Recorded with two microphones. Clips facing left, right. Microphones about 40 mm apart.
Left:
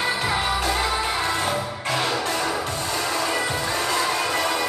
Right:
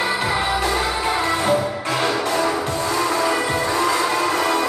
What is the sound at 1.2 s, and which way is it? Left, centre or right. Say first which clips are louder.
Music: right 5 dB; right.